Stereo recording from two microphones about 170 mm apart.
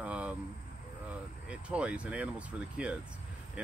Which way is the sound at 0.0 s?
5° right (ahead or behind).